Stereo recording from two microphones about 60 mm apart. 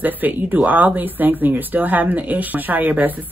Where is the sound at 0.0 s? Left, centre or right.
Right.